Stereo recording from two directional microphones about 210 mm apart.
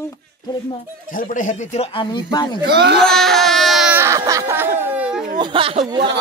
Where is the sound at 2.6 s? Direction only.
55° right (ahead or behind).